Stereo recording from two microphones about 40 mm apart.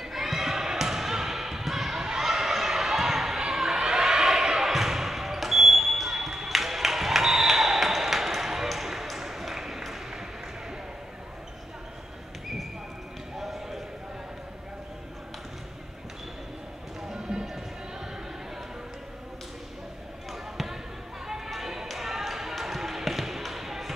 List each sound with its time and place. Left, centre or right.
0.0 s basketball bounce: centre
13.4 s clip-clop: centre
17.1 s music: centre
21.5 s basketball bounce: centre